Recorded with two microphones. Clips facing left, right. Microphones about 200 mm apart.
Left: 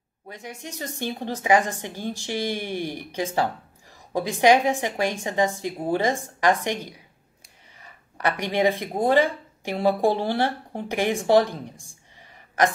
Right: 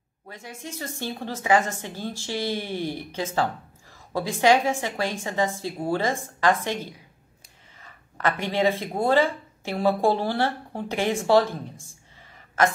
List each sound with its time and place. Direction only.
0.3 s a woman's voice: 15° left (ahead or behind)
8.2 s a woman's voice: 15° left (ahead or behind)